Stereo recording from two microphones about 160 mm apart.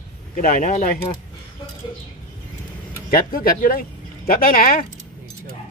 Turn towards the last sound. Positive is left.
turn(degrees=60)  # may be behind; listen again after turning